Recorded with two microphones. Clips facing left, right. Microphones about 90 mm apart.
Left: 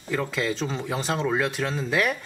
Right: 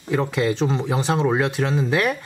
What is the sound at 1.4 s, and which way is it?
Speech, 5° right (ahead or behind).